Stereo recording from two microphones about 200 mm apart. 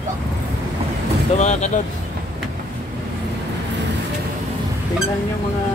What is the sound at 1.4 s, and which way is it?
Speech, 35° left (ahead or behind).